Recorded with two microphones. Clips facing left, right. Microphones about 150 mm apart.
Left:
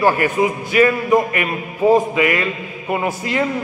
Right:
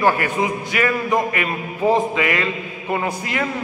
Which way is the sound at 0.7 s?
25° left (ahead or behind).